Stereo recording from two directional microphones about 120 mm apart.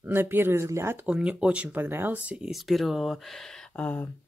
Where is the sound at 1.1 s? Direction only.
10° right (ahead or behind); by 4.0 s 10° left (ahead or behind).